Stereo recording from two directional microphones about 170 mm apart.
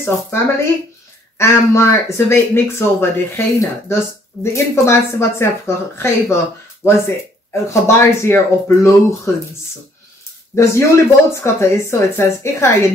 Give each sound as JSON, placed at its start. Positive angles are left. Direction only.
{"t": 0.0, "sound": "speech", "side_deg": 15}
{"t": 10.5, "sound": "speech", "side_deg": 15}